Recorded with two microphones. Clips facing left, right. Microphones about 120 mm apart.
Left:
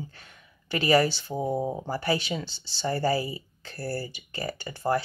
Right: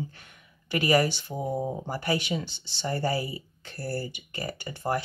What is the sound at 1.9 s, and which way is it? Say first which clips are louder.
Speech: even; 30° left (ahead or behind).